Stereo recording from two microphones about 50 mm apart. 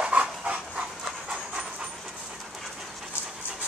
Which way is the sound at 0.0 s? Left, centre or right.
Right.